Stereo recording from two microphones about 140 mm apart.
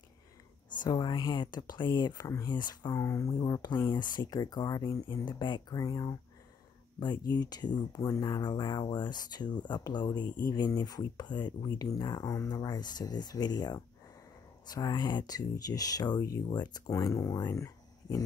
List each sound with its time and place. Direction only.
0.8 s speech: 30° left (ahead or behind)
2.9 s speech: 20° left (ahead or behind)